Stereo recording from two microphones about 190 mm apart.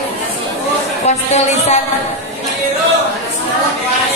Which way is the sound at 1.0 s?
35° left (ahead or behind).